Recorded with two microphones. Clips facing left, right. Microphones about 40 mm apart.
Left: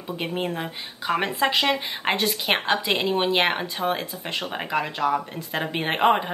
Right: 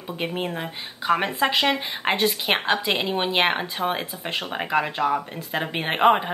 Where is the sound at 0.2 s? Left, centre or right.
Centre.